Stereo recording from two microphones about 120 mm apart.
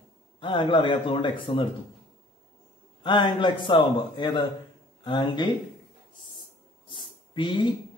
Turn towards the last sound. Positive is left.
turn(degrees=40)  # may be behind; listen again after turning